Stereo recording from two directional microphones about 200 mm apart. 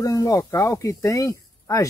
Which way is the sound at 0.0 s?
15° left (ahead or behind).